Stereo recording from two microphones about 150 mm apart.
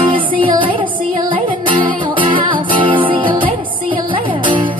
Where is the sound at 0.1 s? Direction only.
35° right (ahead or behind).